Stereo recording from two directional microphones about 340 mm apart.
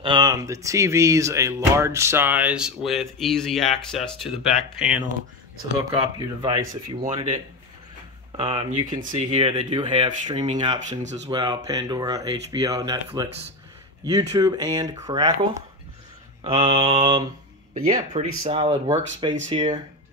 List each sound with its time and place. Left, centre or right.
0.0 s speech: centre
6.1 s speech: centre